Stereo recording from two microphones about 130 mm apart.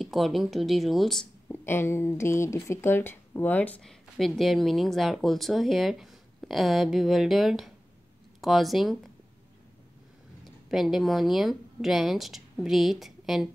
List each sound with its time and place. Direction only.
0.0 s speech: centre (ahead or behind)
1.5 s speech: 20° left (ahead or behind); by 9.1 s centre (ahead or behind)
10.4 s speech: centre (ahead or behind)